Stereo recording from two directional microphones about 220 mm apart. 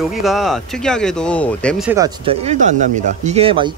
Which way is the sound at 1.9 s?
15° right (ahead or behind).